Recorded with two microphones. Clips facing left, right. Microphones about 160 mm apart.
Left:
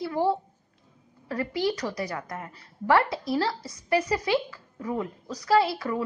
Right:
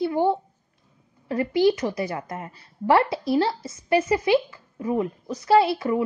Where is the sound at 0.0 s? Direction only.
25° right (ahead or behind).